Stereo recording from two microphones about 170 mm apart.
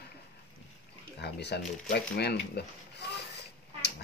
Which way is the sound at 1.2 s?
80° left.